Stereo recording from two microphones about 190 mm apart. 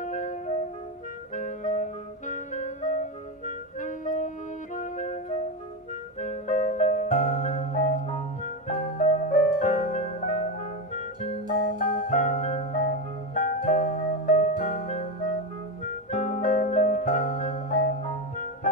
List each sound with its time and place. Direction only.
0.0 s music: 40° left (ahead or behind)
1.3 s clarinet: 40° left (ahead or behind)
4.7 s music: 40° left (ahead or behind)